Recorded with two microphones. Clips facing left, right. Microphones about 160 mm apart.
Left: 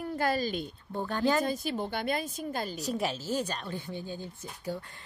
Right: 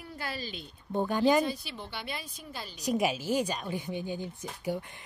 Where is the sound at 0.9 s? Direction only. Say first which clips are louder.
Right 3 dB; 15° right (ahead or behind).